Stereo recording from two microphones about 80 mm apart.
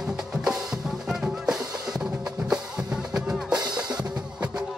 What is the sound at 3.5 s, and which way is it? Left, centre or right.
Drum, right.